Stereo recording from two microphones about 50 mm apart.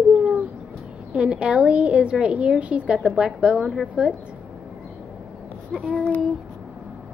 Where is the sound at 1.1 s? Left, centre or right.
Right.